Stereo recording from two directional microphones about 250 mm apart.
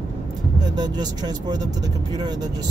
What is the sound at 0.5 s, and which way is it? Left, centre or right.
Speech, centre.